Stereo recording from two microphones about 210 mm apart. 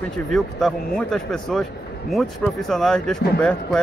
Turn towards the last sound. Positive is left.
turn(degrees=5)  # may be behind; listen again after turning